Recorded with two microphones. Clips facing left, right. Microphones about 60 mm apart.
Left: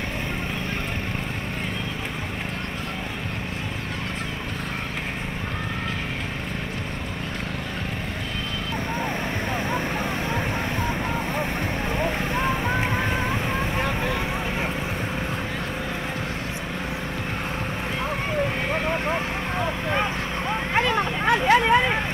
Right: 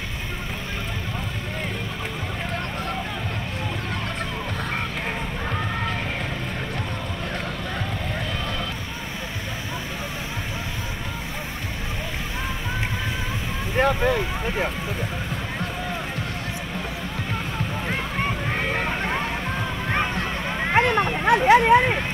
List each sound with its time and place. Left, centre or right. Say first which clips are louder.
13.7 s vehicle: right 5 dB; right
20.7 s vehicle: right 4 dB; right
21.3 s a sound: right 3 dB; right